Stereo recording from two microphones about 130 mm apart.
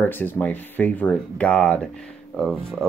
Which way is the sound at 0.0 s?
15° left (ahead or behind).